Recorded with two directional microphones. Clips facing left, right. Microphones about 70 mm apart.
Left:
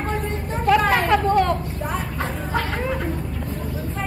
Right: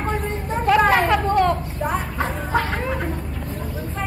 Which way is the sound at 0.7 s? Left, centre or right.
Centre.